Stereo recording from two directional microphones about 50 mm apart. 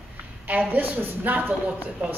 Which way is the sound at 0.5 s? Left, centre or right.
Right.